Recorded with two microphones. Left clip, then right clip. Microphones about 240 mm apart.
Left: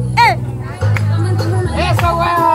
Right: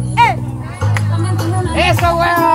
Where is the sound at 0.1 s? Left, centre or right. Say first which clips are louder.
Left 1 dB; left.